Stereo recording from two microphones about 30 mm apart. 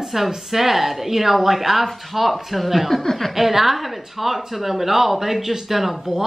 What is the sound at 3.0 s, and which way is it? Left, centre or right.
Speech, centre.